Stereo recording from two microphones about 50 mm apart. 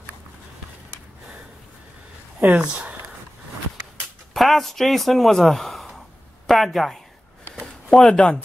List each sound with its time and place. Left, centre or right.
2.4 s speech: right
4.3 s speech: centre
7.5 s a sound: centre